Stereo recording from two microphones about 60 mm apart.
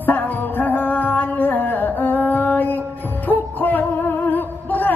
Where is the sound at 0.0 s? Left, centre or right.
Left.